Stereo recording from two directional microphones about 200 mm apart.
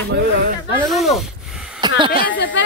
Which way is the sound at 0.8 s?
Centre (ahead or behind).